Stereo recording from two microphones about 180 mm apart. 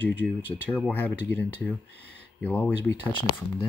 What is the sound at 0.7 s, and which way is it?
Speech, 5° left (ahead or behind).